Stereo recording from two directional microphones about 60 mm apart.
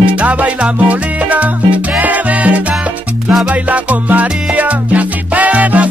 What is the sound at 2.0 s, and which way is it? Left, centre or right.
Music, right.